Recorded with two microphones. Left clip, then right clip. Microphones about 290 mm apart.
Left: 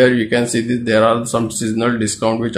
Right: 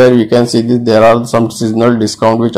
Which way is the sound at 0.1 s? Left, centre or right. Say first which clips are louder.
Right 7 dB; centre.